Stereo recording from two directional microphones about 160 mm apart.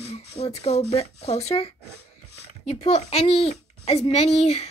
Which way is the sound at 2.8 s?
40° left (ahead or behind).